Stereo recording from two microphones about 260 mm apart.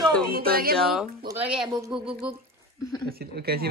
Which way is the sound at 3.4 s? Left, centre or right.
Right.